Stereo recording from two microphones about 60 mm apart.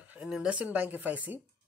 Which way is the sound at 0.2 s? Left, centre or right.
Right.